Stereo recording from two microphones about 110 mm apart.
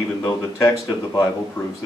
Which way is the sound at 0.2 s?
30° left (ahead or behind).